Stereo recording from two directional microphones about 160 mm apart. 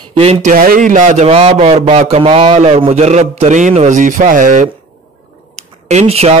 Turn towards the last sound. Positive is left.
turn(degrees=-40)  # may be behind; listen again after turning